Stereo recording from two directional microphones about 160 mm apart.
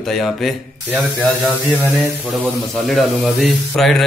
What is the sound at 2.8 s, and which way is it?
Speech, centre (ahead or behind).